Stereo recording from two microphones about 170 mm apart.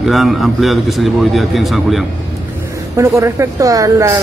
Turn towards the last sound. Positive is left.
turn(degrees=-20)  # may be behind; listen again after turning